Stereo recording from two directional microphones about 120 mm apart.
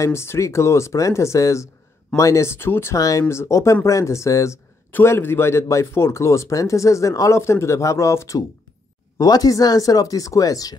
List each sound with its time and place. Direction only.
0.0 s speech: 20° left (ahead or behind)